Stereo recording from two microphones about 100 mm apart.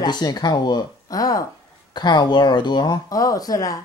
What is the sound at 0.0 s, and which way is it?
A woman's voice, 45° left (ahead or behind).